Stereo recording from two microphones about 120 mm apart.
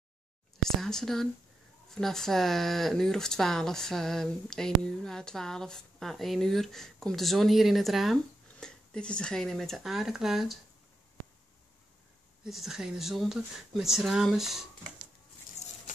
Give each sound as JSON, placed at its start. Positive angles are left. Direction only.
{"t": 0.7, "sound": "speech", "side_deg": 5}
{"t": 12.4, "sound": "speech", "side_deg": -5}